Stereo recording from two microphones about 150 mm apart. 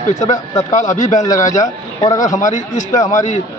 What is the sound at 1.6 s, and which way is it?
Speech, 25° left (ahead or behind).